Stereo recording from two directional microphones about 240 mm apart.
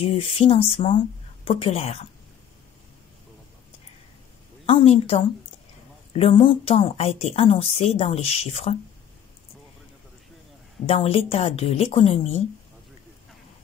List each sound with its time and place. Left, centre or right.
0.1 s speech: left
4.6 s speech: left
10.9 s speech: left